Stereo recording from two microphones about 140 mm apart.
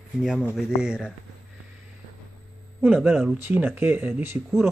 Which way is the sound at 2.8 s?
5° right (ahead or behind).